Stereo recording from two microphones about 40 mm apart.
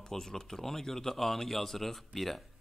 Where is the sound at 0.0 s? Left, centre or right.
Centre.